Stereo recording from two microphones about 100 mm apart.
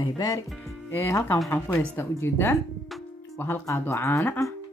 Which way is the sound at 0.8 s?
25° left (ahead or behind).